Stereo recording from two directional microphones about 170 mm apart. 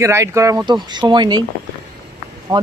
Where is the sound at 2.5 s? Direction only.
25° right (ahead or behind).